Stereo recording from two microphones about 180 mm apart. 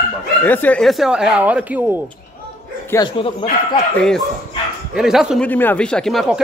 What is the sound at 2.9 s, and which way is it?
Speech, 25° left (ahead or behind).